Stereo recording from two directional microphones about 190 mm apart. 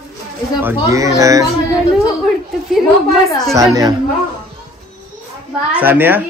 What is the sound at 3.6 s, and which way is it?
Speech, 20° right (ahead or behind).